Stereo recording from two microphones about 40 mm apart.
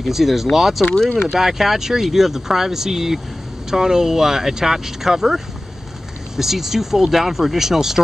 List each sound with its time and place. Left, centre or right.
0.1 s speech: centre